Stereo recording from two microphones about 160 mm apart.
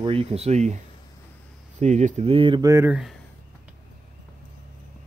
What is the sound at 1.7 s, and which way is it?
Speech, 45° right (ahead or behind).